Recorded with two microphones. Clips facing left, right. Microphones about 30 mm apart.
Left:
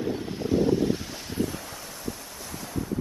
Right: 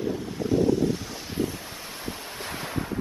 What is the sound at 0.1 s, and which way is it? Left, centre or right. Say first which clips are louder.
Vehicle: even; centre.